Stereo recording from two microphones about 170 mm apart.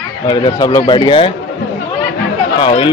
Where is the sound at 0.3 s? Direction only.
25° left (ahead or behind).